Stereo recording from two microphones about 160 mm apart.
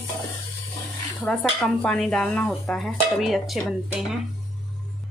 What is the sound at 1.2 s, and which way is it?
Dishes, centre (ahead or behind).